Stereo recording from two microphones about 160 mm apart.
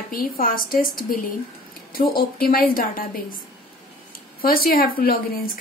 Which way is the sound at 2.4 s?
65° left (ahead or behind).